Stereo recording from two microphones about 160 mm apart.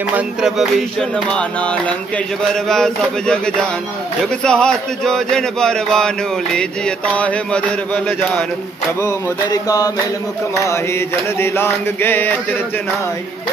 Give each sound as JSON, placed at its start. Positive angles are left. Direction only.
{"t": 0.1, "sound": "music", "side_deg": -5}
{"t": 7.2, "sound": "mantra", "side_deg": 10}
{"t": 9.0, "sound": "a sound", "side_deg": 25}
{"t": 10.6, "sound": "mantra", "side_deg": 15}